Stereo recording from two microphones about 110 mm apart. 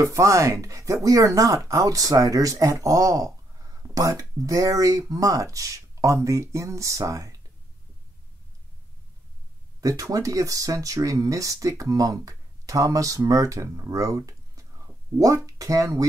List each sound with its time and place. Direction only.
0.0 s speech: 30° right (ahead or behind)
9.8 s speech: 30° right (ahead or behind)